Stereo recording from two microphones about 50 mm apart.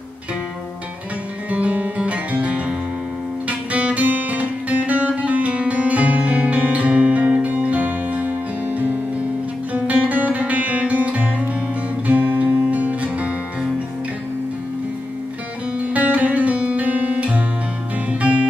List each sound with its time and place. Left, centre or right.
1.5 s guitar: right
3.4 s music: right
15.8 s music: right